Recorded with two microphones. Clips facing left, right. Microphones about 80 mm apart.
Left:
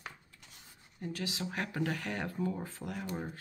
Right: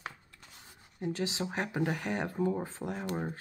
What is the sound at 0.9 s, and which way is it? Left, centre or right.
Speech, right.